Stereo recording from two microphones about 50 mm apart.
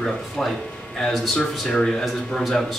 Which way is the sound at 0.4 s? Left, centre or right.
Centre.